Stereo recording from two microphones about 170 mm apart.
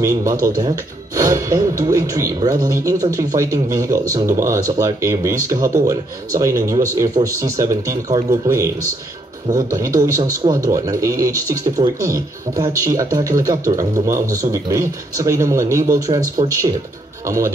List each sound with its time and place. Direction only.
0.0 s speech: 20° right (ahead or behind)